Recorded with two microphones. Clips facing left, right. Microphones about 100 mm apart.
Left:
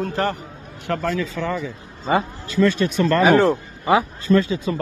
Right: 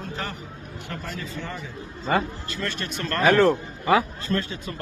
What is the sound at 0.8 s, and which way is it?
Speech, 85° left.